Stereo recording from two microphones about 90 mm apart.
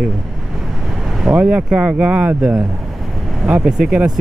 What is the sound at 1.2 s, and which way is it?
Speech, 15° right (ahead or behind).